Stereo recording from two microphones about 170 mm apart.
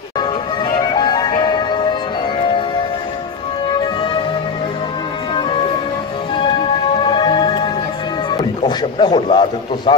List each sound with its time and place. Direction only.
0.7 s music: 25° left (ahead or behind)
7.0 s music: 25° left (ahead or behind)
8.3 s speech: 25° left (ahead or behind)